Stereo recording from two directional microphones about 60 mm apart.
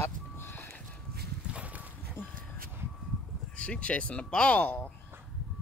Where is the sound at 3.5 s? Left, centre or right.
Left.